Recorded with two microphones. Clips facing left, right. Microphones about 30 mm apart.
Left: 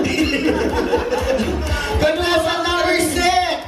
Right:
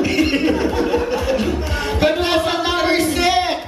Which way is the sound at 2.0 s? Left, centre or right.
Centre.